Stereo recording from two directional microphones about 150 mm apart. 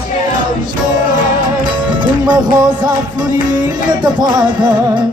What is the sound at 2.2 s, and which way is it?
Music, 25° right (ahead or behind).